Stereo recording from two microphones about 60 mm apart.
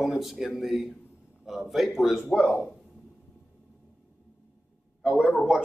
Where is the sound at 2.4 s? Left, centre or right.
Centre.